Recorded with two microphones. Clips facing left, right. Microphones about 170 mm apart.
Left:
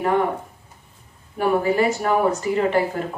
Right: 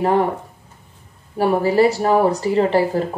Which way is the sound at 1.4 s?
35° right (ahead or behind).